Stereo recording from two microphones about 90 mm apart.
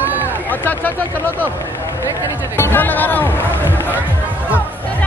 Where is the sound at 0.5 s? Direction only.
20° left (ahead or behind).